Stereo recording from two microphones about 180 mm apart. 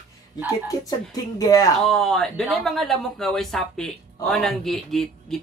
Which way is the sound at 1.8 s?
5° left (ahead or behind).